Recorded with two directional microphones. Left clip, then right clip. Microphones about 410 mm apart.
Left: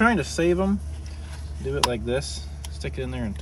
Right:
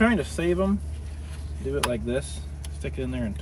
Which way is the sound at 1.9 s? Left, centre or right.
Left.